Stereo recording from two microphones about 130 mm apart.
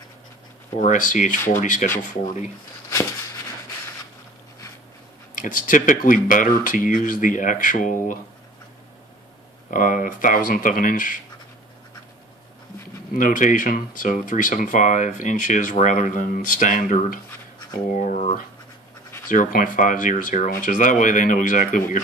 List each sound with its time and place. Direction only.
0.7 s speech: 80° left
5.3 s speech: 90° left
9.7 s speech: 90° left
13.1 s speech: 90° left
17.9 s speech: 70° left (ahead or behind)
19.2 s speech: 90° left